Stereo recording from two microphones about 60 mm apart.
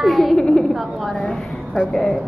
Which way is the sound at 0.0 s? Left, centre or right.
Centre.